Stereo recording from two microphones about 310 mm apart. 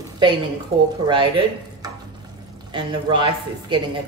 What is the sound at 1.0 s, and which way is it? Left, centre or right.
A woman's voice, centre.